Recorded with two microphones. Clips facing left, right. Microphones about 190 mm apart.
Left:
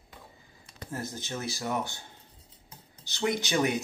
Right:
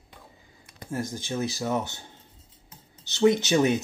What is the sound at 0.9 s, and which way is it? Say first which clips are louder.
Speech: right 5 dB; 15° right (ahead or behind).